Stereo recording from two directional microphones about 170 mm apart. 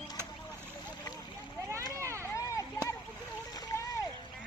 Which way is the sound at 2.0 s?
15° right (ahead or behind).